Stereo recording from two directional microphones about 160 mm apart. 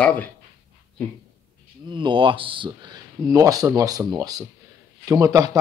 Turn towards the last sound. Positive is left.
turn(degrees=-20)  # may be behind; listen again after turning